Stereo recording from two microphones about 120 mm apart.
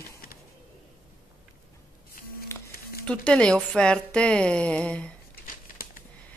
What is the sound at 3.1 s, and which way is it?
Speech, 10° left (ahead or behind).